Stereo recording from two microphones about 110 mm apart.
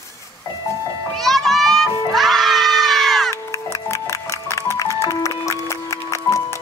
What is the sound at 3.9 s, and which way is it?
Music, 25° left (ahead or behind).